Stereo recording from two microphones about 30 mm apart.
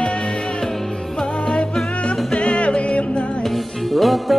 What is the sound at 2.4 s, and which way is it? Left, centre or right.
Music, left.